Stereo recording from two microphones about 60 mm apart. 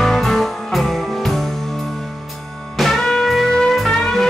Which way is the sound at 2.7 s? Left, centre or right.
Centre.